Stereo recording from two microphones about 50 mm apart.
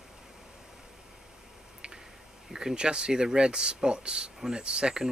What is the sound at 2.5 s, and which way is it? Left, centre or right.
Speech, centre.